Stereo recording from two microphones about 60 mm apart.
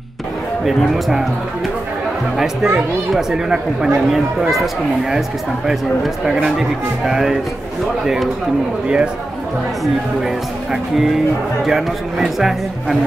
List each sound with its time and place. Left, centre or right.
0.7 s a man's voice: centre
2.3 s a man's voice: centre
7.1 s speech: centre
10.7 s a man's voice: centre